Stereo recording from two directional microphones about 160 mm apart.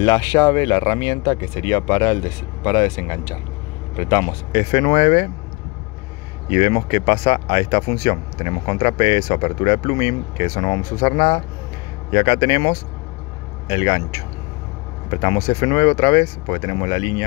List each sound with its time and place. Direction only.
0.0 s speech: 25° left (ahead or behind)
6.5 s speech: 30° left (ahead or behind)
15.4 s speech: 30° left (ahead or behind)